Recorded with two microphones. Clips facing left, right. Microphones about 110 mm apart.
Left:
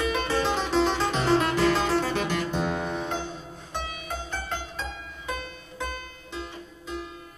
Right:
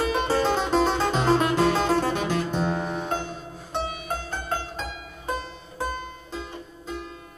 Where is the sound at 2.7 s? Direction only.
Centre (ahead or behind).